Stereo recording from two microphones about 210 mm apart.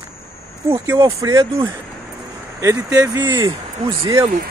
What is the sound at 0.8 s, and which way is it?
Speech, 15° right (ahead or behind).